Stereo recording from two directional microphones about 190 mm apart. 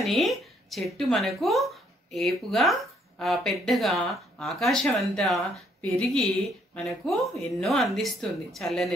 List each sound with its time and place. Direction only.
0.0 s a woman's voice: centre (ahead or behind)